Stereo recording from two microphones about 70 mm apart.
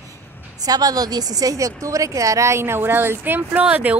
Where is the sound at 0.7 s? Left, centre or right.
Right.